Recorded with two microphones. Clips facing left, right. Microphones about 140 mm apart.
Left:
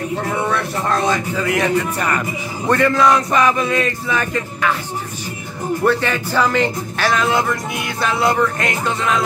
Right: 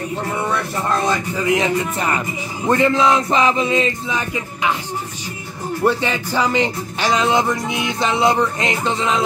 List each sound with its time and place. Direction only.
0.5 s music: 15° right (ahead or behind)
2.7 s speech: 20° right (ahead or behind)
5.9 s music: 15° right (ahead or behind)